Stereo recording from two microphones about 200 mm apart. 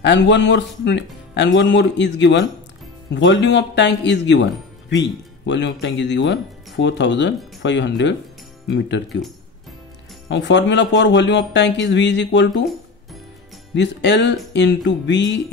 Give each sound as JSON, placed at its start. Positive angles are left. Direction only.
{"t": 0.0, "sound": "speech", "side_deg": 60}
{"t": 10.2, "sound": "speech", "side_deg": 60}
{"t": 13.7, "sound": "speech", "side_deg": 60}